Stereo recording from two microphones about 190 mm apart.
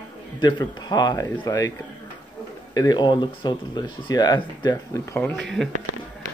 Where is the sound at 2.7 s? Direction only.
20° left (ahead or behind).